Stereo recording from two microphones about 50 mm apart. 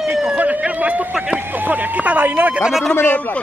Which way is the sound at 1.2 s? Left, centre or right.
Right.